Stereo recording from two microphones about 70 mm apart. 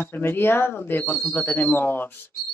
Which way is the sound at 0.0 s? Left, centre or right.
Left.